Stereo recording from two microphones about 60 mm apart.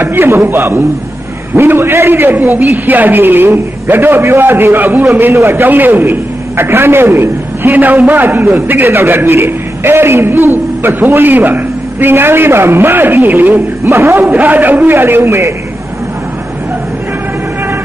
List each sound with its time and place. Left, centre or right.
0.0 s a man's voice: right
5.3 s a man's voice: right
13.8 s a man's voice: right
14.2 s a man's voice: right